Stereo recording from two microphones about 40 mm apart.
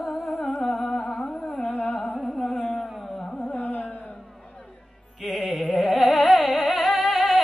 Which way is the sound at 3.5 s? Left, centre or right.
Left.